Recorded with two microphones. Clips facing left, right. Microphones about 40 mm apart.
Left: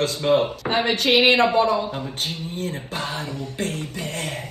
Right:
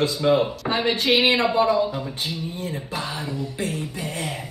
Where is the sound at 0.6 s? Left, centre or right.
Left.